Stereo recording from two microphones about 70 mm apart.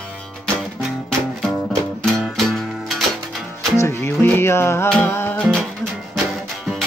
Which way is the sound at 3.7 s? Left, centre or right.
Left.